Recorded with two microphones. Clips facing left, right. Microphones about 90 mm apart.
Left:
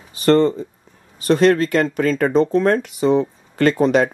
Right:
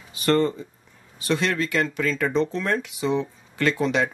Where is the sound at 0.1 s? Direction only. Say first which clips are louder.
Left 6 dB; 35° left (ahead or behind).